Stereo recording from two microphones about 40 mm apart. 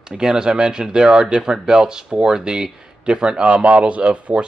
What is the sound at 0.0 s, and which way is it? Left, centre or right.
Speech, centre.